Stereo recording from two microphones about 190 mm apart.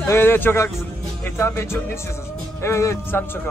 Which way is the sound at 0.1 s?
10° left (ahead or behind).